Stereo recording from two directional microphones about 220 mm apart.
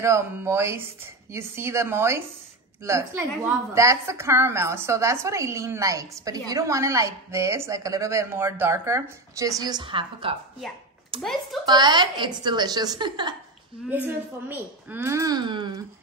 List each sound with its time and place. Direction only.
0.0 s a woman's voice: 10° right (ahead or behind)
11.6 s a woman's voice: 20° right (ahead or behind)
13.8 s a woman's voice: 10° right (ahead or behind)